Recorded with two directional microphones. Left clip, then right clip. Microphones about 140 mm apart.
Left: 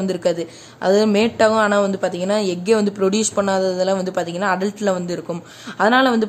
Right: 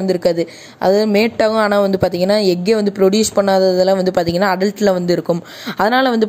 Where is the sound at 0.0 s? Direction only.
30° right (ahead or behind).